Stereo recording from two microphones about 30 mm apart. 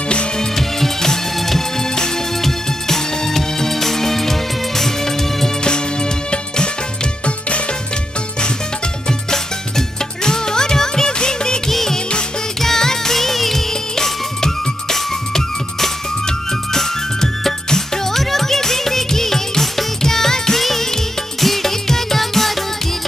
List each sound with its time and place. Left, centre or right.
0.6 s music: centre
7.2 s music: left
9.3 s music: centre
11.7 s music: centre
14.4 s music: centre
16.7 s music: centre